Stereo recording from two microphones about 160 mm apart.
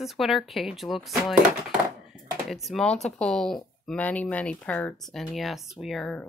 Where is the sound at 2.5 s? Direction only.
Centre (ahead or behind).